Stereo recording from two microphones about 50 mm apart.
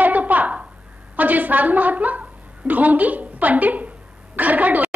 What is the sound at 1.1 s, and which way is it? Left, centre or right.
A woman's voice, right.